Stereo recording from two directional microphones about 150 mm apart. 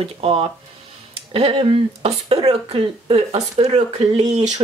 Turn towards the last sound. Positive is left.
turn(degrees=-50)  # may be behind; listen again after turning